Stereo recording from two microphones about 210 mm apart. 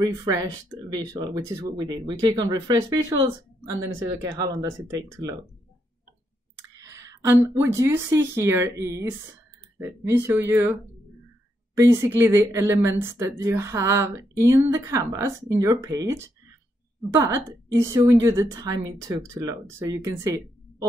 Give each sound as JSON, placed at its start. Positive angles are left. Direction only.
{"t": 0.0, "sound": "speech", "side_deg": -15}
{"t": 6.8, "sound": "speech", "side_deg": -15}